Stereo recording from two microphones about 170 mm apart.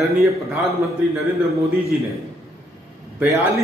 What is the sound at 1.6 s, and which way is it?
Speech, 20° right (ahead or behind).